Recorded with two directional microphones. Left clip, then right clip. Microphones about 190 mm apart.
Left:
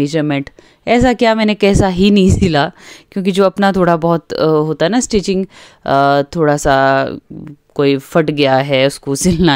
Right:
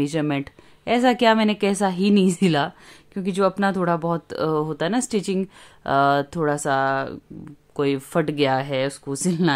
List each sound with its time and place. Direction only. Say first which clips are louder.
0.0 s speech: left 8 dB; 25° left (ahead or behind)